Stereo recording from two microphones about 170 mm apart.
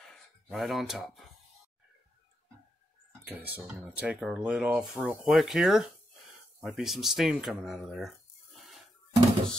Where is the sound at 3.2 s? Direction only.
10° right (ahead or behind).